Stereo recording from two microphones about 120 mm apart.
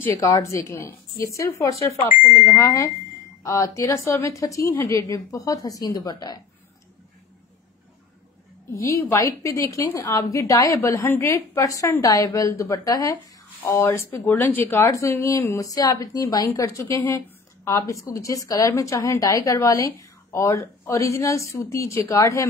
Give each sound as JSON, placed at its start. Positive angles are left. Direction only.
{"t": 0.1, "sound": "a woman's voice", "side_deg": 30}
{"t": 8.7, "sound": "a woman's voice", "side_deg": 25}